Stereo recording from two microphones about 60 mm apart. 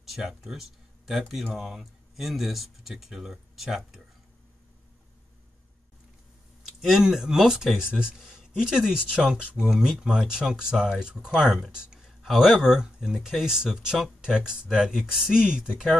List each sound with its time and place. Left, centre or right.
0.0 s speech: centre
6.8 s speech: centre